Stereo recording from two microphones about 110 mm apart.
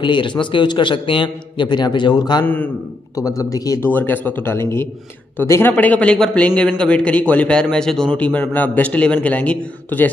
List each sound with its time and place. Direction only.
0.0 s a man's voice: 45° left (ahead or behind)
2.4 s a man's voice: 15° left (ahead or behind)
3.2 s a man's voice: 30° left (ahead or behind)
3.8 s a man's voice: 20° left (ahead or behind)